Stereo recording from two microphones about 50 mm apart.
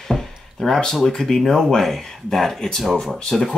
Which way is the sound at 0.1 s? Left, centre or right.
Centre.